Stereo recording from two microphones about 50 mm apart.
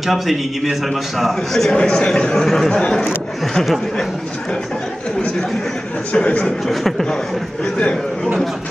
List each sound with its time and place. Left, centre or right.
0.0 s a man's voice: centre
1.7 s speech: centre
2.3 s speech: centre
6.1 s speech: left
6.4 s a man's voice: centre
7.7 s speech: centre